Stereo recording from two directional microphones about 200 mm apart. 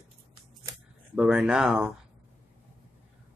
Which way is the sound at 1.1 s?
5° right (ahead or behind).